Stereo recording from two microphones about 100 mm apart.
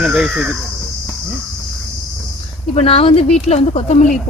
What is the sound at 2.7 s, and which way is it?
Speech, 70° left (ahead or behind).